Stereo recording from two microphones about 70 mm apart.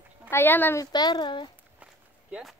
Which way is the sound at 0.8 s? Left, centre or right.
Left.